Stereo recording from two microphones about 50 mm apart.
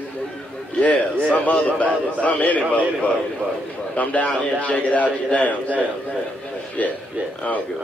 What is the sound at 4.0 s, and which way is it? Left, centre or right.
A man's voice, left.